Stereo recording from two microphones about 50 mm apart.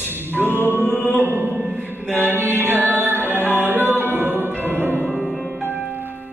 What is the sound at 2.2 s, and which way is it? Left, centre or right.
Mantra, right.